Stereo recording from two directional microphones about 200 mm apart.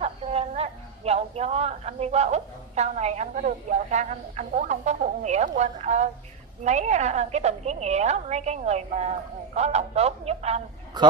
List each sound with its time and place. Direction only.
0.0 s a woman's voice: 30° right (ahead or behind)